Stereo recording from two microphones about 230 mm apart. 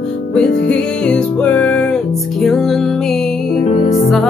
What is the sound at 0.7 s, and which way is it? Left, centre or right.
Music, centre.